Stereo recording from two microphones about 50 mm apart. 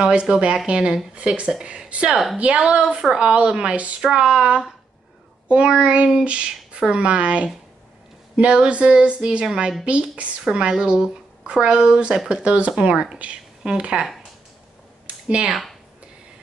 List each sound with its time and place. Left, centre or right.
0.0 s speech: centre
2.0 s speech: centre
2.3 s speech: right
15.2 s speech: right